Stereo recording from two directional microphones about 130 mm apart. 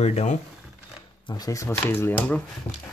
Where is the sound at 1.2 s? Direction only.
30° left (ahead or behind); by 2.4 s 10° left (ahead or behind).